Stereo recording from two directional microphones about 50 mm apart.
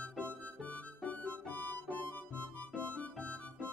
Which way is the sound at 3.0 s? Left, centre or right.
Left.